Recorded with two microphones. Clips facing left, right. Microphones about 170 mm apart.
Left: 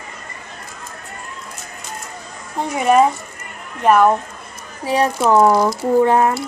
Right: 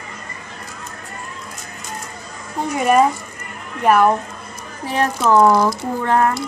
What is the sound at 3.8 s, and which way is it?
Speech, 5° right (ahead or behind).